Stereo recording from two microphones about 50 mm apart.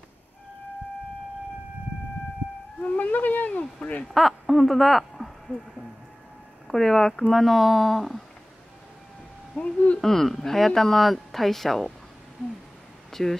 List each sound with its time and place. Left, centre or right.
2.8 s a sound: left
4.1 s speech: centre
9.6 s speech: left
9.9 s speech: centre
13.1 s speech: centre